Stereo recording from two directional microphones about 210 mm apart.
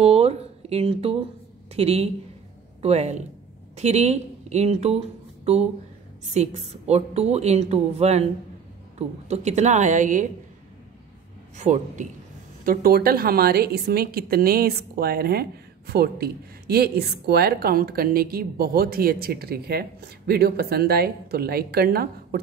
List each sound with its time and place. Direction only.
0.0 s a sound: 30° right (ahead or behind)
1.8 s a woman's voice: 30° right (ahead or behind)
11.5 s a woman's voice: 35° right (ahead or behind)
12.6 s speech: 45° right (ahead or behind)